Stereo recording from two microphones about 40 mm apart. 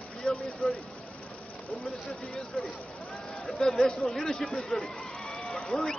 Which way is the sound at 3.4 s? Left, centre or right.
Centre.